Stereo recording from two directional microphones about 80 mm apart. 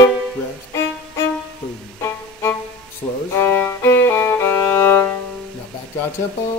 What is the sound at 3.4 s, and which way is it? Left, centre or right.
Violin, left.